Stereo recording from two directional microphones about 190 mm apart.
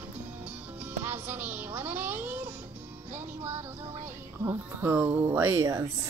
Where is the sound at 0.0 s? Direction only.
10° right (ahead or behind).